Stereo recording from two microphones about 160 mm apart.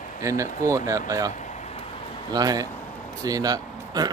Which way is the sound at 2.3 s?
25° right (ahead or behind).